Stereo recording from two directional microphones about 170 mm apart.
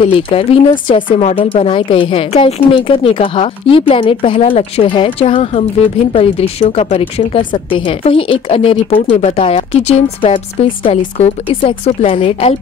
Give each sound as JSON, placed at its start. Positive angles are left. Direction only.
{"t": 0.0, "sound": "a woman's voice", "side_deg": 35}